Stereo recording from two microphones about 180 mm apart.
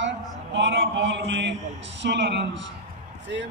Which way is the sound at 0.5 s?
90° right.